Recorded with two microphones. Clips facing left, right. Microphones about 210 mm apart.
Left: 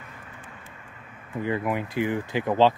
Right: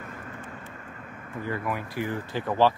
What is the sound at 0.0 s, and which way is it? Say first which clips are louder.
Vehicle: right 6 dB; 45° right (ahead or behind).